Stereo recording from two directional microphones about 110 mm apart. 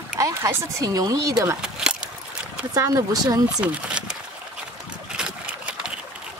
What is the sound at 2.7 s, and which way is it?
Speech, 30° right (ahead or behind).